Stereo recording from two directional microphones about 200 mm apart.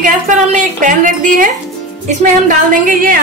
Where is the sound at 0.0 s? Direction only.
40° right (ahead or behind).